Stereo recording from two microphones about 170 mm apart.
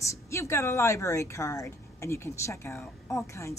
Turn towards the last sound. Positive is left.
turn(degrees=15)  # may be behind; listen again after turning